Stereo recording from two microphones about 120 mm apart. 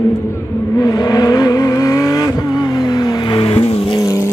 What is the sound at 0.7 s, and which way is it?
Vehicle, 30° left (ahead or behind).